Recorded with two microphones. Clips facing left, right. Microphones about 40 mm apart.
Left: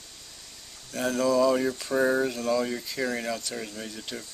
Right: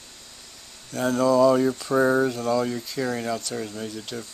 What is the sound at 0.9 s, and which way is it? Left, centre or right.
Speech, centre.